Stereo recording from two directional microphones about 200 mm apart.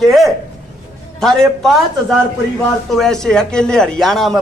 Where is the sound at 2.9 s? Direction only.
Centre (ahead or behind).